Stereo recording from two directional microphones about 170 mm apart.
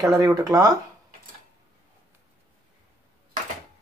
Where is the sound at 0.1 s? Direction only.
20° right (ahead or behind).